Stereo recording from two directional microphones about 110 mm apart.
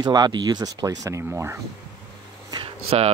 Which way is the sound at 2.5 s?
55° right (ahead or behind).